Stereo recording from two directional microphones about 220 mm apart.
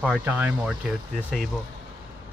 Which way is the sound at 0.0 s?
5° right (ahead or behind).